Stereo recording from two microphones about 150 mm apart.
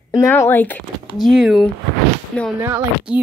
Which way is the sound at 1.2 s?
Centre (ahead or behind).